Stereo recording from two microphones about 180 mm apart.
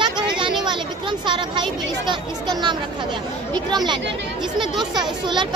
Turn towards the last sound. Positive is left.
turn(degrees=-25)  # may be behind; listen again after turning